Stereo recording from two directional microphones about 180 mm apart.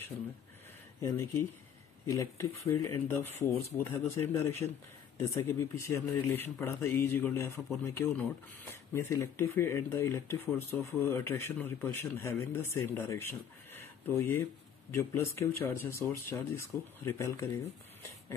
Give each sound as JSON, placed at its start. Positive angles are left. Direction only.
{"t": 1.0, "sound": "speech", "side_deg": 15}